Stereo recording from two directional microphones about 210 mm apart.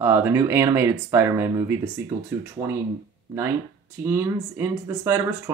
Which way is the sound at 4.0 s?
10° right (ahead or behind).